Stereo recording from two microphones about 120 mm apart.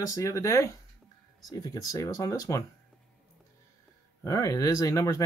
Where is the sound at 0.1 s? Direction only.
25° left (ahead or behind).